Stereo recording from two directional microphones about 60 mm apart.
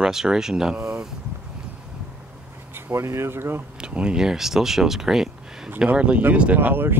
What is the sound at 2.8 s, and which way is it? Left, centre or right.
Speech, right.